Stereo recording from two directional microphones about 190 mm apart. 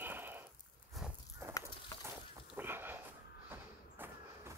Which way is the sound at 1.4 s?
15° right (ahead or behind).